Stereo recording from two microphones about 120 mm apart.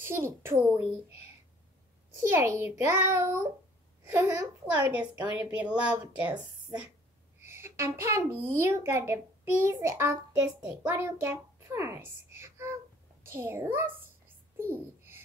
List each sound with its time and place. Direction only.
0.0 s speech: 20° right (ahead or behind)
2.1 s a child's voice: 20° right (ahead or behind)
4.7 s speech: 10° right (ahead or behind)
7.3 s a child's voice: 20° right (ahead or behind)
10.3 s speech: 10° right (ahead or behind)
10.9 s a child's voice: 20° right (ahead or behind)
14.6 s babbling: 20° right (ahead or behind)